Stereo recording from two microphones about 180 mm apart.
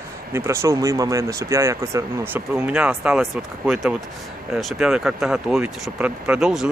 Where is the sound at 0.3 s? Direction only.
15° right (ahead or behind).